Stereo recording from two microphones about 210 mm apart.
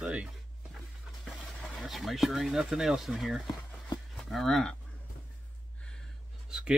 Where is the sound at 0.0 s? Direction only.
5° right (ahead or behind).